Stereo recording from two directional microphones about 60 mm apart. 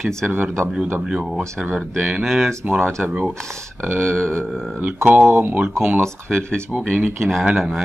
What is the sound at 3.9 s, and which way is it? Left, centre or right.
Speech, right.